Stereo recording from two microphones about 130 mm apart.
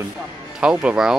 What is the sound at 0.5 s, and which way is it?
Speech, 5° right (ahead or behind).